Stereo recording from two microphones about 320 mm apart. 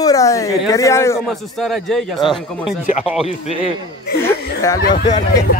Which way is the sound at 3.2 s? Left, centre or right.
Centre.